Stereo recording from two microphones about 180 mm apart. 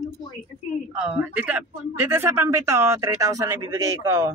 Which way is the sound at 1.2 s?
10° right (ahead or behind).